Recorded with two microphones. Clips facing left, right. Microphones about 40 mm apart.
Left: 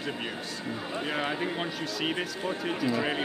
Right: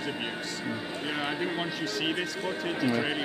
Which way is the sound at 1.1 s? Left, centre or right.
Centre.